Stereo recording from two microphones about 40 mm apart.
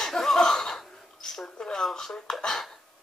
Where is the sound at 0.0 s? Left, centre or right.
Centre.